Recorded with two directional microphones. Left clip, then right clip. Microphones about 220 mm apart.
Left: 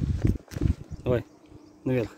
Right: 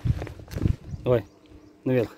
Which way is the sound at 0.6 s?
20° right (ahead or behind).